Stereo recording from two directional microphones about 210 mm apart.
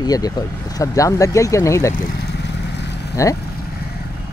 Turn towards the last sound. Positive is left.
turn(degrees=15)  # may be behind; listen again after turning